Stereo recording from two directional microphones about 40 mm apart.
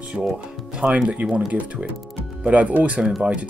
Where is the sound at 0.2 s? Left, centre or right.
Centre.